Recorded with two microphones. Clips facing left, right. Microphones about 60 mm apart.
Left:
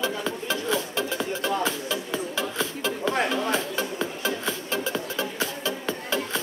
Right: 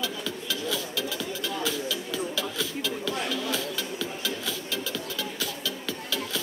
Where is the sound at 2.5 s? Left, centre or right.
Left.